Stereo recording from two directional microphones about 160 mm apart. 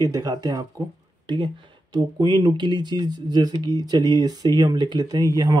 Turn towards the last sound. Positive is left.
turn(degrees=-25)  # may be behind; listen again after turning